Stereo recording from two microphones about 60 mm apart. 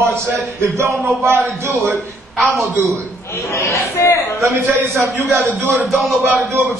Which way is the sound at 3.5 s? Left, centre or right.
Left.